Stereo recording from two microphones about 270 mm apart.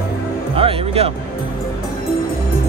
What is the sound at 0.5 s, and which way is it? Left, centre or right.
Speech, right.